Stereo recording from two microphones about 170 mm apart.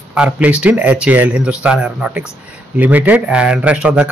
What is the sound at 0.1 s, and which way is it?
A man's voice, 5° right (ahead or behind).